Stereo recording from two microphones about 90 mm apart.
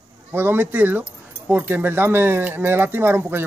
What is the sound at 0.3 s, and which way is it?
Speech, 25° right (ahead or behind).